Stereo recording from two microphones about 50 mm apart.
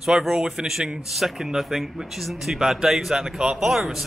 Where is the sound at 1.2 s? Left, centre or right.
Centre.